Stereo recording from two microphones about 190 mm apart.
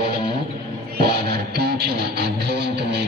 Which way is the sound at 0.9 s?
55° right (ahead or behind).